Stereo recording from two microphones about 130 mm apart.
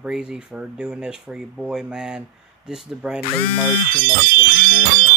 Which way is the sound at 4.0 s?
90° right.